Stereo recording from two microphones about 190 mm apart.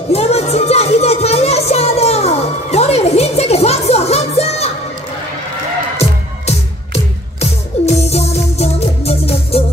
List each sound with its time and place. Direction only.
0.1 s music: 35° left (ahead or behind)
5.9 s music: 35° left (ahead or behind)